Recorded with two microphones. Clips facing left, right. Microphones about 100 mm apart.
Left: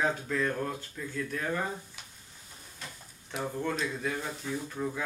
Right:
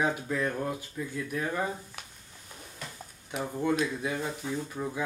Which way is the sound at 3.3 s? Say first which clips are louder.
Right 4 dB; 10° right (ahead or behind).